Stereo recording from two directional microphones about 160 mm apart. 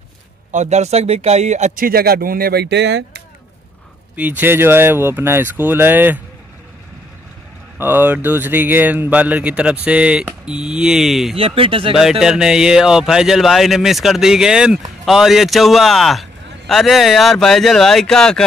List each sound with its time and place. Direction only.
0.5 s speech: 45° right (ahead or behind)
1.9 s speech: 75° right (ahead or behind); by 3.2 s 90° right
4.2 s speech: 10° right (ahead or behind)
7.8 s speech: 10° right (ahead or behind)
11.3 s speech: 35° right (ahead or behind)
12.0 s a man's voice: 5° right (ahead or behind)